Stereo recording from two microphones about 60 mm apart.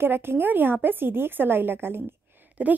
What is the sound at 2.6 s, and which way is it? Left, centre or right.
Speech, right.